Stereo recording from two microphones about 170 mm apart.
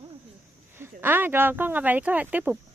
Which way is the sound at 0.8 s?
10° right (ahead or behind).